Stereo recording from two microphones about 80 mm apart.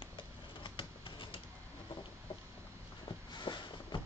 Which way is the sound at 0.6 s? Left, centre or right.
Left.